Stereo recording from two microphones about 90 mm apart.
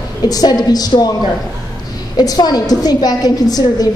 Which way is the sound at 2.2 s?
50° left (ahead or behind).